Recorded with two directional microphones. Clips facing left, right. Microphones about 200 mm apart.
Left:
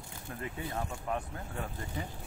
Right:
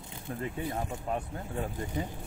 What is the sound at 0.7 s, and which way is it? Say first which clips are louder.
Speech: right 2 dB; 20° right (ahead or behind).